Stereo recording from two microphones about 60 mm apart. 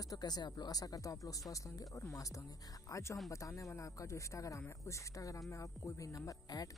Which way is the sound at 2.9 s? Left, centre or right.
Left.